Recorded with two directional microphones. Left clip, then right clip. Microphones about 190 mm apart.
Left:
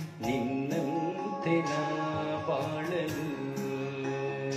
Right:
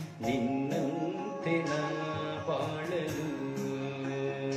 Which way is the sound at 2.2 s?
15° left (ahead or behind).